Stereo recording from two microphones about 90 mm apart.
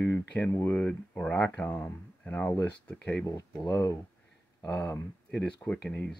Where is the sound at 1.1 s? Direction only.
10° left (ahead or behind).